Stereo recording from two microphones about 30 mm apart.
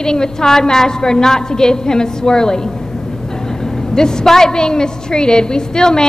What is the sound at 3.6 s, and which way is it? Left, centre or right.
A man's voice, left.